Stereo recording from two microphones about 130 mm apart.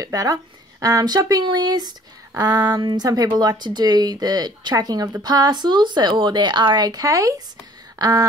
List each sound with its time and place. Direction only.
0.0 s speech: 25° right (ahead or behind)